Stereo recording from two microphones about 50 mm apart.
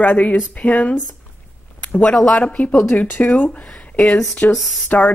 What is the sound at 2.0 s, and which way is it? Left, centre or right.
Speech, centre.